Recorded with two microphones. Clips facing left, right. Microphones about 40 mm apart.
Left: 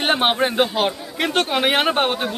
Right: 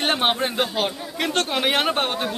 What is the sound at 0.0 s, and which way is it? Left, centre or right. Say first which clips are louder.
Speech: left 3 dB; centre.